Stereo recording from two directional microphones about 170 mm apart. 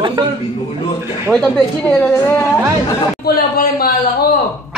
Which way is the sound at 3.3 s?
65° left (ahead or behind).